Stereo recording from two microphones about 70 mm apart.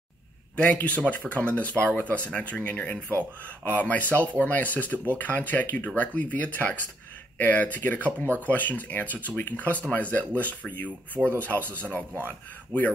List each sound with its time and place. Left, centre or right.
0.7 s speech: left